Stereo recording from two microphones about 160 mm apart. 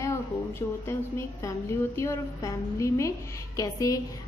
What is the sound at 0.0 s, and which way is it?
A woman's voice, 15° left (ahead or behind).